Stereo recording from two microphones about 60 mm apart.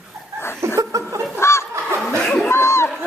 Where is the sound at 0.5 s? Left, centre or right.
Right.